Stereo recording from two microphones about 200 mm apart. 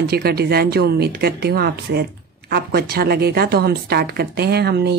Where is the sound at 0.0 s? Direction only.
50° right (ahead or behind).